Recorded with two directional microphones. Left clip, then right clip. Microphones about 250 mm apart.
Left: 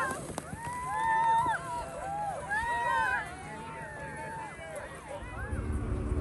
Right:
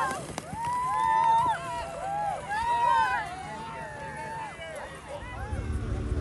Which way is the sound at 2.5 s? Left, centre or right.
Centre.